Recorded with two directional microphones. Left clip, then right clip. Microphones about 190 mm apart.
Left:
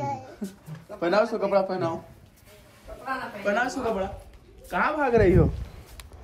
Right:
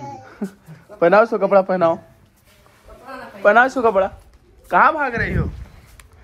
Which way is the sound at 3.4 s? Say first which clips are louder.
Right 13 dB; 15° right (ahead or behind).